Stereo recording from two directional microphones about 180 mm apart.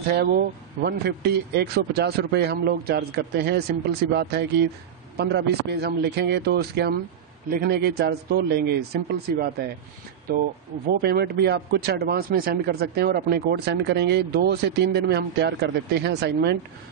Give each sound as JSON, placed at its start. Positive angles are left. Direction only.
{"t": 0.1, "sound": "speech", "side_deg": -60}